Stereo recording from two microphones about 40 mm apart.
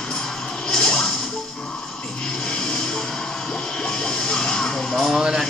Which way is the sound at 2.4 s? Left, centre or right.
Centre.